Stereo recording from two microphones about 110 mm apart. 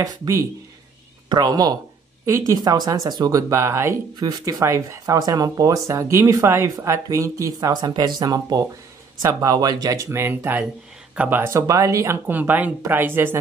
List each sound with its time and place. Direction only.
1.3 s speech: 35° right (ahead or behind)
2.2 s speech: 25° right (ahead or behind)
2.6 s speech: 35° right (ahead or behind)
4.2 s speech: 35° right (ahead or behind); by 11.5 s 15° right (ahead or behind)
11.5 s speech: 30° right (ahead or behind)
12.3 s speech: 15° right (ahead or behind)